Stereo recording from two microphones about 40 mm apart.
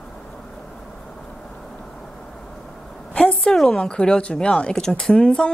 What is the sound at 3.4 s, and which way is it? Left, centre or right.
Speech, centre.